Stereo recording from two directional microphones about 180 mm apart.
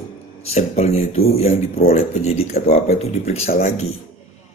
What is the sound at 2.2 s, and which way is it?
Speech, 35° left (ahead or behind).